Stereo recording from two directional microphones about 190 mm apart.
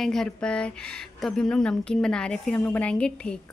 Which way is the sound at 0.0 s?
Centre (ahead or behind).